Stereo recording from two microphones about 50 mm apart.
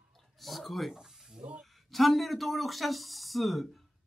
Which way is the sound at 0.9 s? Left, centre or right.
Centre.